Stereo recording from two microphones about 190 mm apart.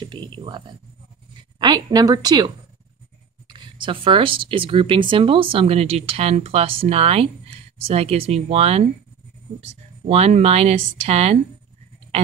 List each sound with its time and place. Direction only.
0.0 s speech: 25° right (ahead or behind)